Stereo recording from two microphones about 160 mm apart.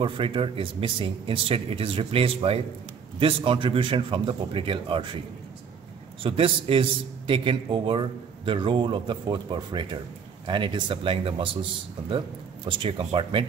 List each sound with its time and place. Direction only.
0.0 s a man's voice: 35° right (ahead or behind)
6.2 s a man's voice: 35° right (ahead or behind)
12.6 s a man's voice: 30° right (ahead or behind)